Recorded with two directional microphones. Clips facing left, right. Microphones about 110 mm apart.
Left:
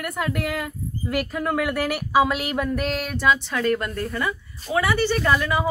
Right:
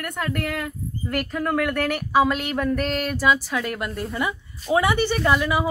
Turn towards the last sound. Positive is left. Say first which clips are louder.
# right 1 dB
turn(degrees=-10)  # may be behind; listen again after turning